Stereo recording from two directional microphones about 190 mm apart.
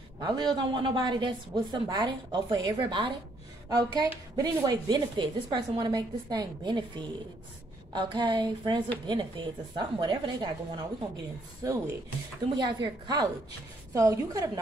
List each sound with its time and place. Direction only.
0.2 s a woman's voice: 25° right (ahead or behind)